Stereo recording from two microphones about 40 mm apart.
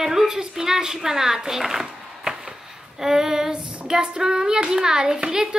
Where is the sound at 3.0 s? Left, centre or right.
Centre.